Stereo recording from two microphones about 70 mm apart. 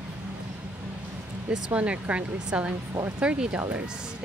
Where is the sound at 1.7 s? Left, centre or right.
Centre.